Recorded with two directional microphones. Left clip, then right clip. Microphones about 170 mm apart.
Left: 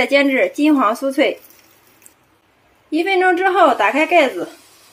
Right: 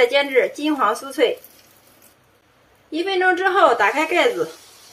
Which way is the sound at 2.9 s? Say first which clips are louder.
Left 4 dB; 25° left (ahead or behind).